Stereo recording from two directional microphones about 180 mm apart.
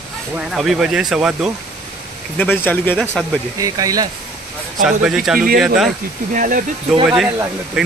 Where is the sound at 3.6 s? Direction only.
20° right (ahead or behind).